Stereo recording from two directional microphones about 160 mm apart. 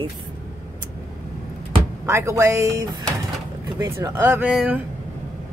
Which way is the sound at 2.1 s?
20° right (ahead or behind).